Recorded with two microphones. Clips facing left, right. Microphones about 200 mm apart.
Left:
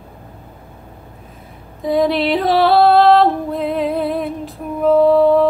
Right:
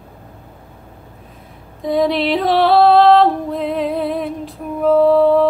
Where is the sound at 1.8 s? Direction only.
Centre (ahead or behind).